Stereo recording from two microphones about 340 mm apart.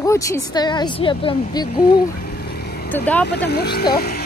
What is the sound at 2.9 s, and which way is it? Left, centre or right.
Speech, centre.